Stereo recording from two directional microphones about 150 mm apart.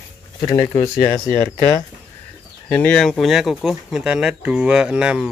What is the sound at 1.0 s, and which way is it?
Speech, 20° left (ahead or behind).